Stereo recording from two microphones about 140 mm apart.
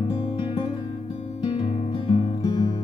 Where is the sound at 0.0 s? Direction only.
35° left (ahead or behind).